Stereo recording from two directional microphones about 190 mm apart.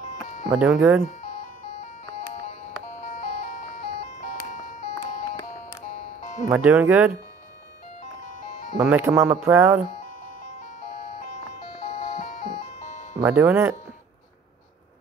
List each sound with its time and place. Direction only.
0.5 s speech: 10° right (ahead or behind)
3.1 s music: 50° left (ahead or behind)
5.2 s music: 20° left (ahead or behind)
6.5 s speech: 10° right (ahead or behind)
8.7 s speech: 10° right (ahead or behind)
13.2 s speech: 10° right (ahead or behind)